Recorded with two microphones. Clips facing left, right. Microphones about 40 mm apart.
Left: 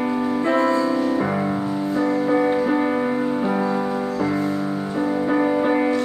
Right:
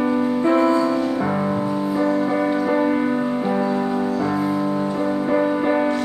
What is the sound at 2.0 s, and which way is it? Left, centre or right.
Music, centre.